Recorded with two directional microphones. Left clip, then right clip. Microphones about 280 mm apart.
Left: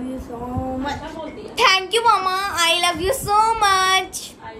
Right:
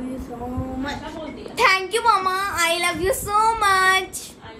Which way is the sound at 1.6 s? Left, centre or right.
Centre.